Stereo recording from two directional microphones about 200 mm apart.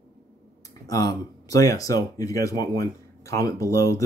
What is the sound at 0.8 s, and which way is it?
Speech, 20° left (ahead or behind).